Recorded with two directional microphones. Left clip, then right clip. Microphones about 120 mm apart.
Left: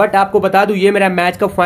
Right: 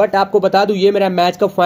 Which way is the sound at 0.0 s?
35° right (ahead or behind).